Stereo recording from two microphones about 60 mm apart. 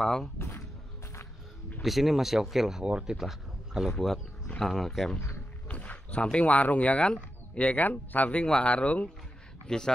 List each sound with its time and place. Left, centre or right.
0.0 s speech: centre
0.4 s a sound: left
1.8 s speech: centre
4.6 s speech: centre
5.7 s a sound: left
6.3 s speech: left